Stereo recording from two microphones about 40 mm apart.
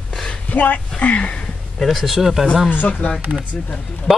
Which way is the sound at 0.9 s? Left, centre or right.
Left.